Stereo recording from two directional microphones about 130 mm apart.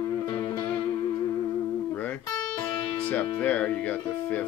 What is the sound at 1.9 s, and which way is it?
Music, 10° left (ahead or behind).